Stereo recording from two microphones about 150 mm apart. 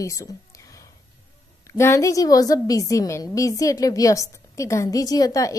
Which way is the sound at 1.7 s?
20° left (ahead or behind).